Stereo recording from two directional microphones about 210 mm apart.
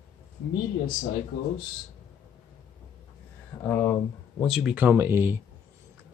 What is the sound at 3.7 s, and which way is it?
Speech, 15° left (ahead or behind).